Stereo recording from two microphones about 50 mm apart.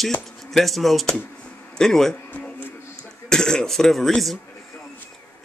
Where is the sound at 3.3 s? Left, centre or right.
Centre.